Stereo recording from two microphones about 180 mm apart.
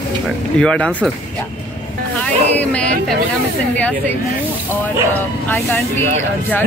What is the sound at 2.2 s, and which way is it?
Speech, 10° left (ahead or behind).